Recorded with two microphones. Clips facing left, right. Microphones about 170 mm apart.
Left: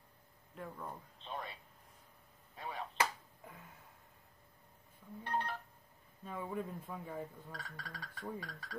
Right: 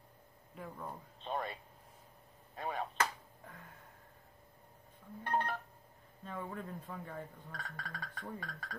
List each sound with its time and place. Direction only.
0.6 s speech: 5° right (ahead or behind)
1.2 s a sound: 55° right (ahead or behind)
2.5 s chop: 50° right (ahead or behind)
3.0 s a sound: 10° left (ahead or behind)
5.2 s telephone dialing: 55° right (ahead or behind)
6.2 s speech: 10° left (ahead or behind)
7.5 s speech: 50° right (ahead or behind)